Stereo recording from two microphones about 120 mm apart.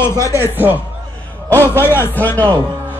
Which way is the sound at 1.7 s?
20° left (ahead or behind).